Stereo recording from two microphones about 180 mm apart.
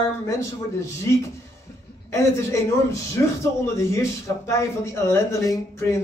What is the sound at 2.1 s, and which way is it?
Speech, 15° left (ahead or behind).